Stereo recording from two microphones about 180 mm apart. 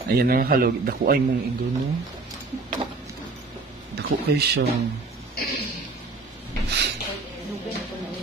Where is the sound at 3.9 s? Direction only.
65° right (ahead or behind).